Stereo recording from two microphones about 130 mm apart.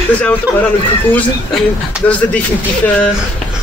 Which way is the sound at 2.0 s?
10° left (ahead or behind).